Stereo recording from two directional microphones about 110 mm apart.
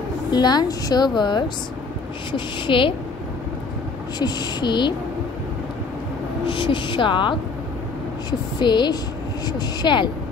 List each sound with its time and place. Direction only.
0.3 s a woman's voice: 40° left (ahead or behind)
4.2 s a woman's voice: 40° left (ahead or behind)
6.4 s a woman's voice: 50° left (ahead or behind)